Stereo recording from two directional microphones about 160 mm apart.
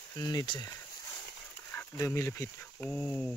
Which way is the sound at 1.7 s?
15° left (ahead or behind).